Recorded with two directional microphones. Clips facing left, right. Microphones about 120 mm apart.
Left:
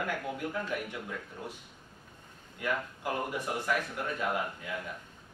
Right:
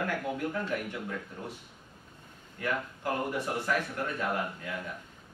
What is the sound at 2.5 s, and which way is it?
Speech, 15° left (ahead or behind).